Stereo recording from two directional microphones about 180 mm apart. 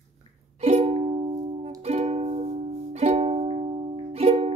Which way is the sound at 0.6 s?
35° right (ahead or behind).